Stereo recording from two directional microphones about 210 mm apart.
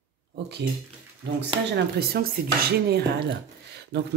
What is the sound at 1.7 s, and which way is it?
Speech, 45° right (ahead or behind).